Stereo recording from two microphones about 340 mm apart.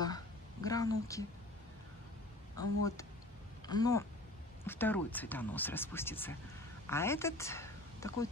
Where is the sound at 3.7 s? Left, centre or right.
Centre.